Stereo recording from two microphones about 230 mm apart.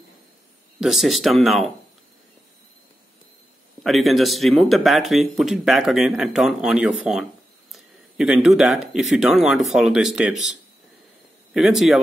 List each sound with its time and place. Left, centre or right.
0.7 s speech: centre
3.8 s speech: centre
7.7 s a sound: centre
9.1 s speech: centre
11.5 s speech: centre